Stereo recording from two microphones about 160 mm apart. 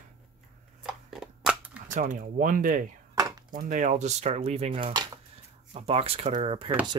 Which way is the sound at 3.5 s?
55° right (ahead or behind).